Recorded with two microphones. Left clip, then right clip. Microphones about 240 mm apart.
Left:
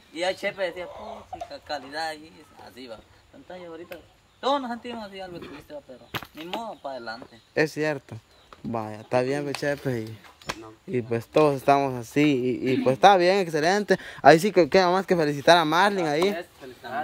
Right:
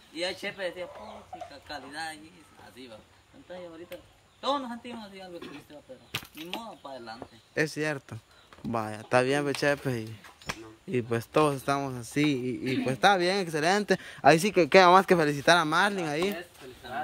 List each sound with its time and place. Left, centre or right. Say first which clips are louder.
0.1 s speech: left 6 dB; centre
7.5 s speech: left 5 dB; centre
16.9 s speech: left 4 dB; centre